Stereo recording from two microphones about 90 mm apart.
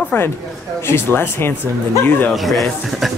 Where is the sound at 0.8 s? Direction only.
25° left (ahead or behind).